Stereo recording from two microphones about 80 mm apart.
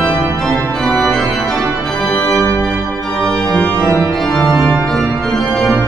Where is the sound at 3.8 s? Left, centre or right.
Right.